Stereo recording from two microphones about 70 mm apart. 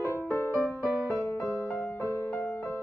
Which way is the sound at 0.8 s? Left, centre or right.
Centre.